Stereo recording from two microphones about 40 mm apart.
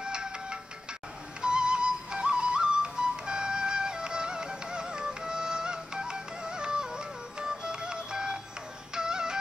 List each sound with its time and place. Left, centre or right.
0.0 s music: right